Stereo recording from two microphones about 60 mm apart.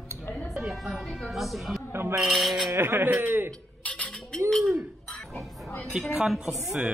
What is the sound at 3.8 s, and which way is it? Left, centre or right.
Cutlery, left.